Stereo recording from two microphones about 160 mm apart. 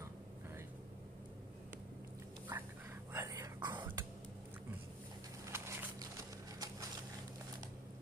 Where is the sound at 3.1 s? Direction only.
20° right (ahead or behind).